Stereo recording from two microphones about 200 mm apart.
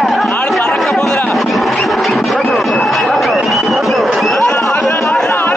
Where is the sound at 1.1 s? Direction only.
5° left (ahead or behind).